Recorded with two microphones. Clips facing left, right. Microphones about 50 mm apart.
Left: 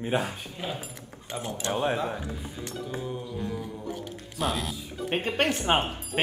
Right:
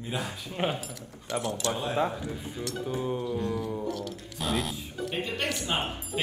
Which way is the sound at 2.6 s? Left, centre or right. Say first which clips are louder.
Right 3 dB; right.